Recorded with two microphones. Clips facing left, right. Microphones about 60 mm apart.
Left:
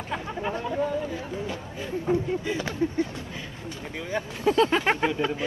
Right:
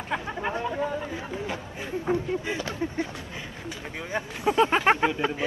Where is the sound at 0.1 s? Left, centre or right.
Right.